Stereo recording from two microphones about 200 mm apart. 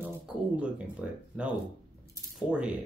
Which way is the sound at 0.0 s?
5° right (ahead or behind).